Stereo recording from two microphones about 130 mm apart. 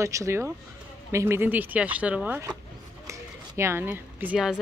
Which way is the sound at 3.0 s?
20° right (ahead or behind).